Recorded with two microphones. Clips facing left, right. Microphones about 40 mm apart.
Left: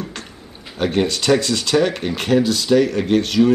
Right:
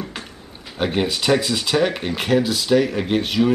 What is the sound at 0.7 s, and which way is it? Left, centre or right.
Speech, centre.